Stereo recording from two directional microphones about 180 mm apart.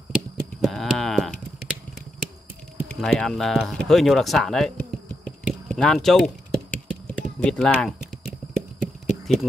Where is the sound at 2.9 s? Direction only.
5° left (ahead or behind).